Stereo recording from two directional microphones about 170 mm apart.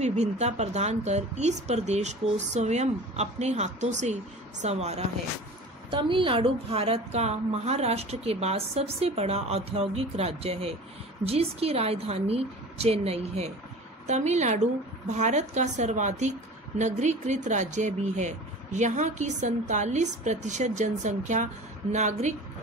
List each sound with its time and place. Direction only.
0.0 s speech: 40° right (ahead or behind)
5.9 s a woman's voice: 30° right (ahead or behind)